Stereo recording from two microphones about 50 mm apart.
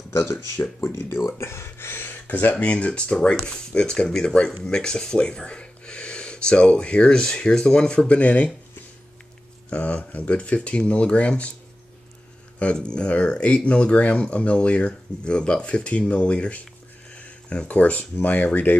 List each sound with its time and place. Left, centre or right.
0.1 s speech: left
2.2 s speech: left
2.5 s speech: left
9.7 s speech: left
12.7 s speech: centre
17.1 s a sound: left
18.2 s cutlery: left